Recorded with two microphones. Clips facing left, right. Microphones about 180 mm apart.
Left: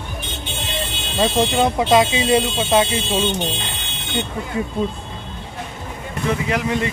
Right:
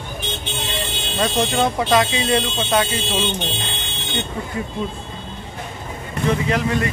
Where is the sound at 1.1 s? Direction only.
20° left (ahead or behind).